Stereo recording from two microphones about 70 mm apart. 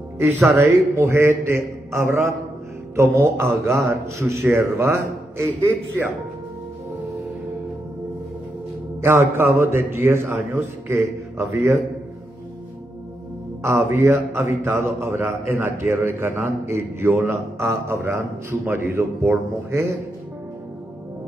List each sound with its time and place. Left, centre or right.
0.2 s speech: right
9.0 s speech: right
13.6 s speech: right